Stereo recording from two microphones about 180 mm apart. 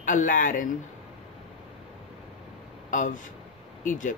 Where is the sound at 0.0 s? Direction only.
45° left (ahead or behind).